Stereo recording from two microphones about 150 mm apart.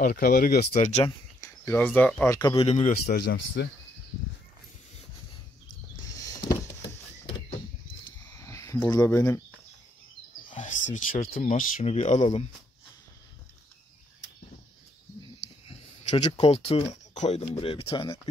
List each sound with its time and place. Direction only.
0.0 s speech: 70° left (ahead or behind)
0.7 s speech: 45° left (ahead or behind)
1.0 s speech: 20° left (ahead or behind)
2.5 s a man's voice: 40° left (ahead or behind)
3.1 s speech: 90° left
6.0 s a sound: 25° left (ahead or behind)
8.4 s a sound: 20° left (ahead or behind)
8.9 s speech: 20° left (ahead or behind)
10.5 s speech: 55° left (ahead or behind)
11.8 s speech: 45° left (ahead or behind)
15.6 s speech: 40° left (ahead or behind)